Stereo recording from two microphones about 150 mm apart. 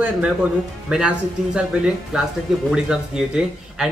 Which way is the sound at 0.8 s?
5° right (ahead or behind).